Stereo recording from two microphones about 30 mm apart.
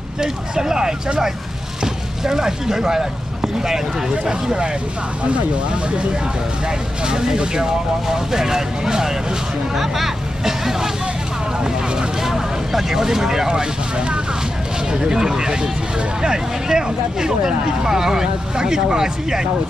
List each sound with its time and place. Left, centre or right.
0.2 s speech: right
2.2 s speech: centre
7.1 s speech: right
9.8 s speech: centre
11.6 s vehicle: right
12.2 s vehicle: centre
13.5 s speech: right
14.9 s speech: right